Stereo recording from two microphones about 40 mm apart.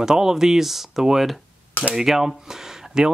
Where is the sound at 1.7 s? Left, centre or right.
Left.